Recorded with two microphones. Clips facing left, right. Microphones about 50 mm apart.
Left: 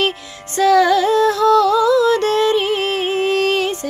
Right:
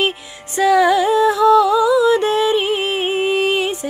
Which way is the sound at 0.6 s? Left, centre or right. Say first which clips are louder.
Left 1 dB; centre.